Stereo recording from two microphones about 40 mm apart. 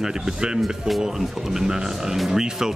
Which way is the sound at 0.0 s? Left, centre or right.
Centre.